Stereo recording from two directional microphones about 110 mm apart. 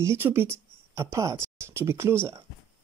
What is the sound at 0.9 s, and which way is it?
Speech, 30° right (ahead or behind).